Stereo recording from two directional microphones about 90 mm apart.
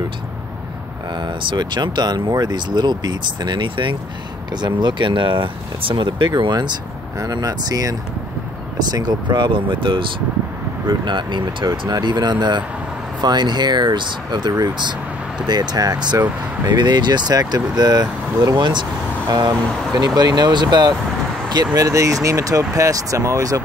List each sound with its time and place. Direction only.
1.2 s speech: 55° right (ahead or behind)
4.5 s speech: 55° right (ahead or behind)
7.2 s speech: 45° right (ahead or behind)
19.2 s speech: 45° right (ahead or behind)
21.7 s speech: 40° right (ahead or behind)